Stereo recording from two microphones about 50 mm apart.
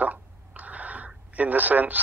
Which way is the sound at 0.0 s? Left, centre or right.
Right.